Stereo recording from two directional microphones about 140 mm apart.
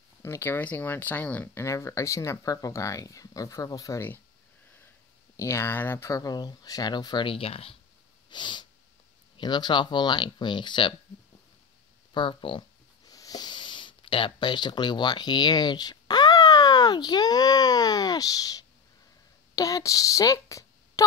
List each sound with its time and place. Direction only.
0.2 s speech: 20° left (ahead or behind)
5.4 s speech: 20° left (ahead or behind); by 11.0 s 35° left (ahead or behind)
12.1 s a child's voice: 35° left (ahead or behind)